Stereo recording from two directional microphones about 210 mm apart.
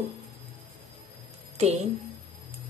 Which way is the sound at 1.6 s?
30° right (ahead or behind).